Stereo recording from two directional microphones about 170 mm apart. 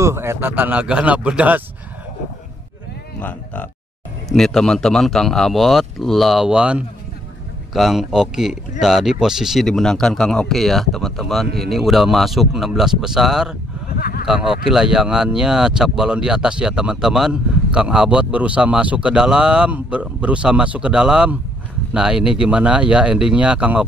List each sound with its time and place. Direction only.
0.0 s a man's voice: 15° right (ahead or behind)
3.2 s a man's voice: 10° left (ahead or behind)
13.8 s a sound: 65° left (ahead or behind)
14.2 s a man's voice: 5° right (ahead or behind)